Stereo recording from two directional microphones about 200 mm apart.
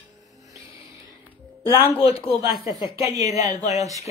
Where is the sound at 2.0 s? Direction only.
30° left (ahead or behind).